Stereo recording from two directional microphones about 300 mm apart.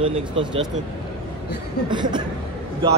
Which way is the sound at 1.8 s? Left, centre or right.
Centre.